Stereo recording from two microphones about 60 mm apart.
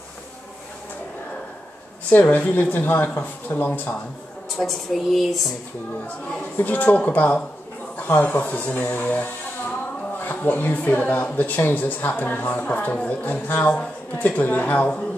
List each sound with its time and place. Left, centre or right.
2.0 s speech: left
4.6 s a woman's voice: centre
6.0 s a woman's voice: left